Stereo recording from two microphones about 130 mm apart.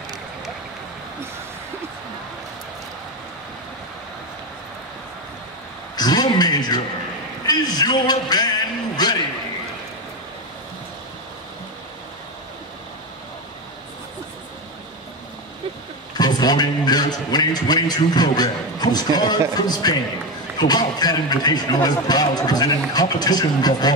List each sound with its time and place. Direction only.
5.9 s a sound: 30° left (ahead or behind)
7.4 s a man's voice: 30° left (ahead or behind)
16.2 s a man's voice: 30° left (ahead or behind)